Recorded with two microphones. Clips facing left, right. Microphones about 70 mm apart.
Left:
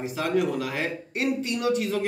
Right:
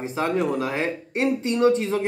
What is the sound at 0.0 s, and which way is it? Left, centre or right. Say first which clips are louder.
Speech: right 2 dB; right.